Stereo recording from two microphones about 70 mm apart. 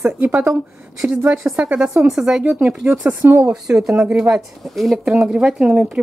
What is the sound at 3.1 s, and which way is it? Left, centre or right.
Speech, right.